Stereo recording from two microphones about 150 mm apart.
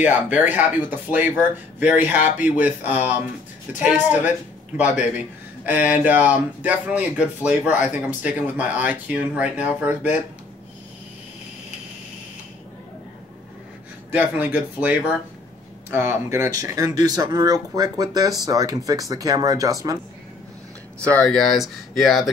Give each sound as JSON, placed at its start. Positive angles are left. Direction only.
{"t": 0.0, "sound": "speech", "side_deg": -10}
{"t": 14.1, "sound": "speech", "side_deg": -10}
{"t": 21.1, "sound": "speech", "side_deg": 5}